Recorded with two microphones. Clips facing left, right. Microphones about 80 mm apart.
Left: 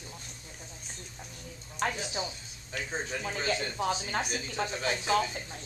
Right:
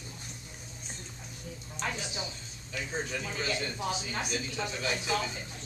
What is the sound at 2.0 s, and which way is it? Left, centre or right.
Speech, left.